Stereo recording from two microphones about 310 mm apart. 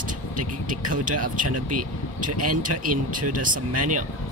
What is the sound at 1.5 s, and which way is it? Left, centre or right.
Speech, right.